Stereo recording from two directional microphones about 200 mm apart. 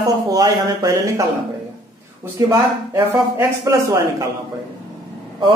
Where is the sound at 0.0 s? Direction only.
15° right (ahead or behind).